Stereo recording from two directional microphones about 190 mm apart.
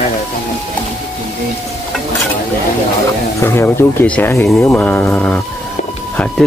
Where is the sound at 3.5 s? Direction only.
10° left (ahead or behind).